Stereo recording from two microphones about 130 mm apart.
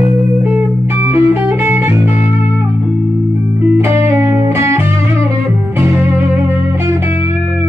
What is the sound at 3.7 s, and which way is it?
Music, 20° right (ahead or behind).